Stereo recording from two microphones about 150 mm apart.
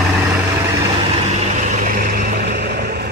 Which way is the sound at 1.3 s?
55° right (ahead or behind).